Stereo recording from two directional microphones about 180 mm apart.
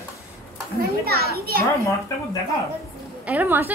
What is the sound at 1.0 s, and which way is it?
Speech, 60° right (ahead or behind).